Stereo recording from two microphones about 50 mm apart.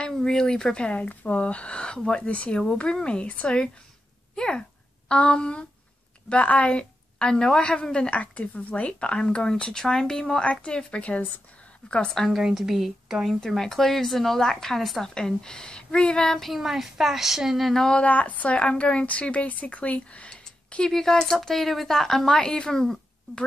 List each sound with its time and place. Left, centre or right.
0.1 s a woman's voice: centre
0.9 s a woman's voice: left
12.3 s speech: centre
13.5 s a woman's voice: centre
16.3 s speech: centre
17.8 s a woman's voice: left